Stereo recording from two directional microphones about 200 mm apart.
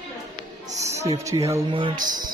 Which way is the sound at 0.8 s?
35° right (ahead or behind).